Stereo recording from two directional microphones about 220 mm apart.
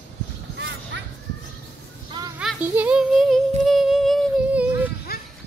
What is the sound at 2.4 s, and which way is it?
A child's voice, 5° right (ahead or behind).